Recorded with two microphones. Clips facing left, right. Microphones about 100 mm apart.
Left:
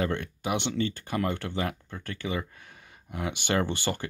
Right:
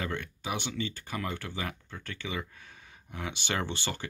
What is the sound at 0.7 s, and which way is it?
Speech, 50° left (ahead or behind).